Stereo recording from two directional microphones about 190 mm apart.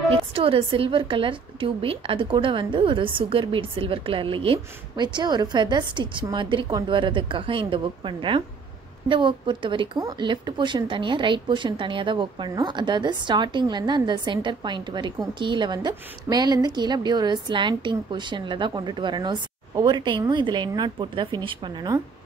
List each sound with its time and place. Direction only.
0.3 s speech: 30° right (ahead or behind)